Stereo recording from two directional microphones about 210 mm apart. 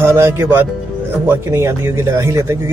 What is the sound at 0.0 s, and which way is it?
A man's voice, 10° right (ahead or behind).